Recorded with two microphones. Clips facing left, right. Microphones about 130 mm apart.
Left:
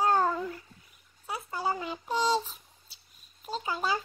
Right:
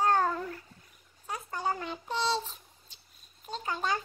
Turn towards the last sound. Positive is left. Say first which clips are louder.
# left 1 dB
turn(degrees=10)  # may be behind; listen again after turning